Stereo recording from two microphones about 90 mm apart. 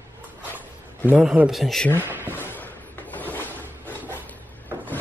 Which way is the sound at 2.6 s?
20° left (ahead or behind).